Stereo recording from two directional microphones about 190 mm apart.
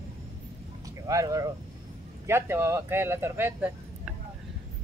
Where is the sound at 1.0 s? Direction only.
15° right (ahead or behind).